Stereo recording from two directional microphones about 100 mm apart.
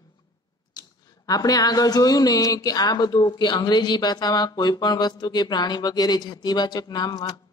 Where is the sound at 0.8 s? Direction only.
40° left (ahead or behind).